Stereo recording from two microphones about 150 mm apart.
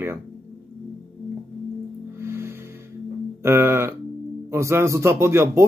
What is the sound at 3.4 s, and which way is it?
A man's voice, 15° right (ahead or behind).